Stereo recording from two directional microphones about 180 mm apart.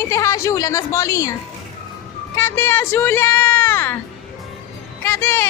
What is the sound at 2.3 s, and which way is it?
Music, 15° left (ahead or behind).